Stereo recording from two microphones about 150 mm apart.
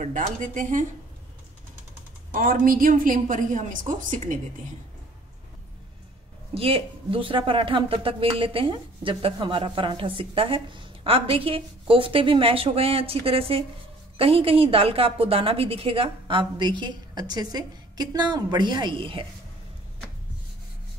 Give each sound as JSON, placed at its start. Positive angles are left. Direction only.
{"t": 0.0, "sound": "a woman's voice", "side_deg": -55}
{"t": 2.3, "sound": "a woman's voice", "side_deg": -70}
{"t": 6.5, "sound": "a woman's voice", "side_deg": -40}